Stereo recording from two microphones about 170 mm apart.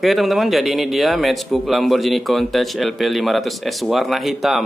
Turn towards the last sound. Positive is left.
turn(degrees=0)  # may be behind; listen again after turning